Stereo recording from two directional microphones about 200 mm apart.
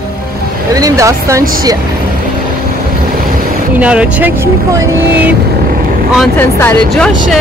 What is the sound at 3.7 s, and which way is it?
Speech, 5° right (ahead or behind).